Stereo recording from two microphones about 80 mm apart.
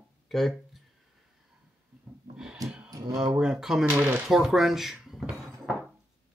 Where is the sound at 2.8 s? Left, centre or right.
Right.